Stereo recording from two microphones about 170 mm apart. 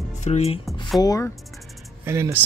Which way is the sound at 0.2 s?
40° left (ahead or behind).